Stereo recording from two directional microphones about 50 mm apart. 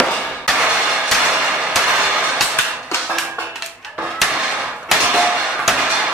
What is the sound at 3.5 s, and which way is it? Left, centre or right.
Music, centre.